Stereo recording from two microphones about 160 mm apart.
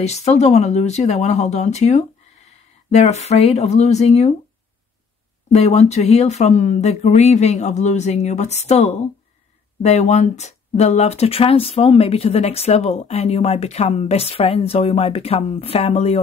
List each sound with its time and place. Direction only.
0.0 s speech: 45° left (ahead or behind)
5.5 s speech: 40° left (ahead or behind)